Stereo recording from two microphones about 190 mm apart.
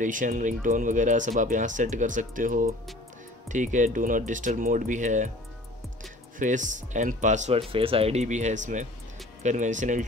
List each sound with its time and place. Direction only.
0.0 s speech: 45° right (ahead or behind)
6.4 s speech: 40° right (ahead or behind)